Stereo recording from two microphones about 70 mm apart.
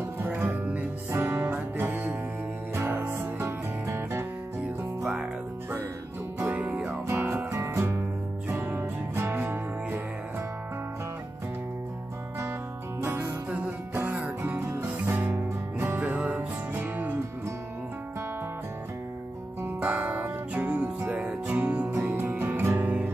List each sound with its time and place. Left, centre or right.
0.2 s music: right
1.1 s music: right
6.5 s music: right
7.5 s music: right
8.0 s music: right
13.0 s music: right
13.5 s music: centre
15.3 s music: right
16.3 s music: right
19.9 s music: right
22.4 s music: right